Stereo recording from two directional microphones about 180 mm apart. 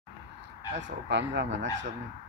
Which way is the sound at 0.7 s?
85° right.